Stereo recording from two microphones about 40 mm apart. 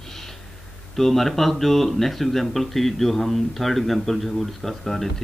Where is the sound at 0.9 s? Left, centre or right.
Centre.